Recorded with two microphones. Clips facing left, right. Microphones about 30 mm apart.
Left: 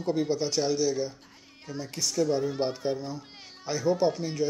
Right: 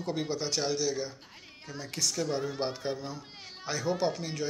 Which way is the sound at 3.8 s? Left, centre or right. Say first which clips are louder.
Left 5 dB; right.